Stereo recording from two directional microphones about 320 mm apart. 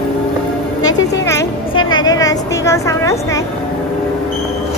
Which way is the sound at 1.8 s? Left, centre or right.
Left.